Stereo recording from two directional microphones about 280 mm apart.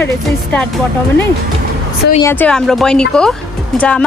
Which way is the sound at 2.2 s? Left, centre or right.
Centre.